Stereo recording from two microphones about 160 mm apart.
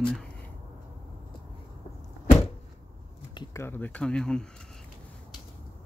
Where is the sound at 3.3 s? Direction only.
15° left (ahead or behind).